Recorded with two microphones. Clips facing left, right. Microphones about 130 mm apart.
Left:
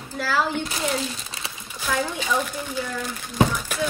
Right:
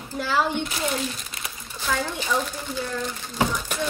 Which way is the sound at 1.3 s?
30° left (ahead or behind).